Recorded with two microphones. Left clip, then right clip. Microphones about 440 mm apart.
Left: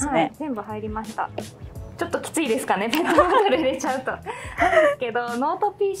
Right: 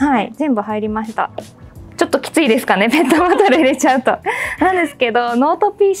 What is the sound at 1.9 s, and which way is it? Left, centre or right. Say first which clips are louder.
Music: right 11 dB; right.